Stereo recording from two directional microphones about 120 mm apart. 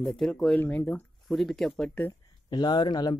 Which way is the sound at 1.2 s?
Centre (ahead or behind).